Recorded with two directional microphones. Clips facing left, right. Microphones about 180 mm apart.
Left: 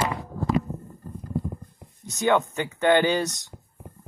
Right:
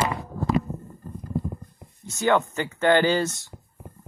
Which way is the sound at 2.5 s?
15° left (ahead or behind).